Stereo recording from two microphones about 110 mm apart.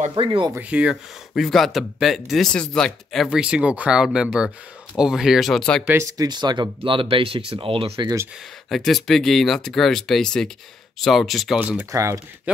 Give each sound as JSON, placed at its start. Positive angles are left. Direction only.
{"t": 0.1, "sound": "speech", "side_deg": -50}
{"t": 0.6, "sound": "speech", "side_deg": -10}
{"t": 3.3, "sound": "speech", "side_deg": -10}
{"t": 5.9, "sound": "speech", "side_deg": -30}
{"t": 8.6, "sound": "speech", "side_deg": 0}
{"t": 11.8, "sound": "speech", "side_deg": -25}